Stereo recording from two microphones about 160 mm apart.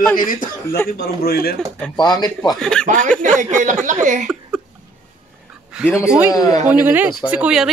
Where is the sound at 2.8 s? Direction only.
55° right (ahead or behind).